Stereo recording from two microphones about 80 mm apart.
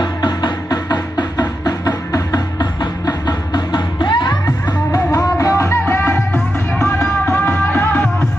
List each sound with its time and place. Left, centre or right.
0.0 s music: left
4.9 s music: left